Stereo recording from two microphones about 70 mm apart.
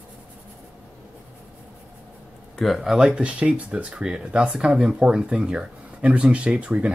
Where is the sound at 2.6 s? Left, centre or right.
Centre.